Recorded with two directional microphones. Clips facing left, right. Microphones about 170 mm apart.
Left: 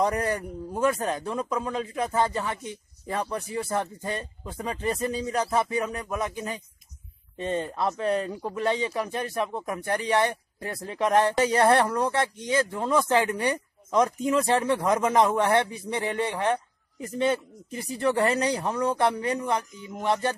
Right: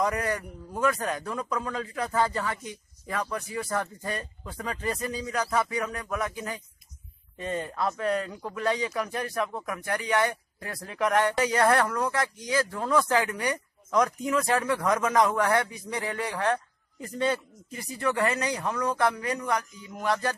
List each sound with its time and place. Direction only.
0.0 s speech: 30° left (ahead or behind)